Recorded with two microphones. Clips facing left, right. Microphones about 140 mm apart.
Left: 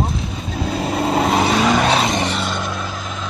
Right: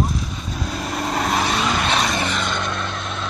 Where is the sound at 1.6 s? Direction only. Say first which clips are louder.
Left 6 dB; 35° left (ahead or behind).